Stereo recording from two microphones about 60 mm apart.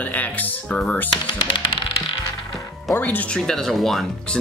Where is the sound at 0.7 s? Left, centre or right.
Centre.